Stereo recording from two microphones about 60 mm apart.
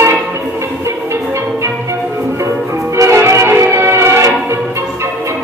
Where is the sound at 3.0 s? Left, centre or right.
Right.